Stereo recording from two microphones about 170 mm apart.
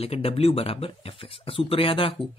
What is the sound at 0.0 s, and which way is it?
A man's voice, 35° left (ahead or behind).